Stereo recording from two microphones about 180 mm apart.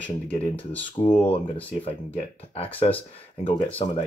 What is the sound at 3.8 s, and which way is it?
Speech, 30° left (ahead or behind).